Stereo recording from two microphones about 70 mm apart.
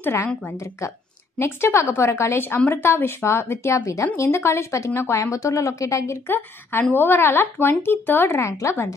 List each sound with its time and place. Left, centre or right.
0.0 s speech: left
1.4 s a woman's voice: left
6.2 s speech: left